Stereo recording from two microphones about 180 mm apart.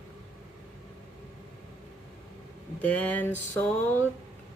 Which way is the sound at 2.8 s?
10° left (ahead or behind).